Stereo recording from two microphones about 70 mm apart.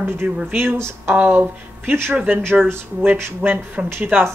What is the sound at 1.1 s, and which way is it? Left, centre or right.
Speech, right.